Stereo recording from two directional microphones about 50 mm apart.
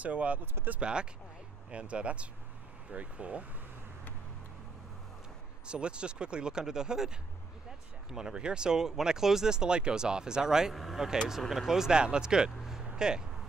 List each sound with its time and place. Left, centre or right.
0.0 s speech: right
5.7 s speech: centre
8.1 s speech: centre